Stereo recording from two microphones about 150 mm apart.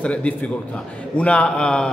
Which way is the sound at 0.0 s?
10° left (ahead or behind).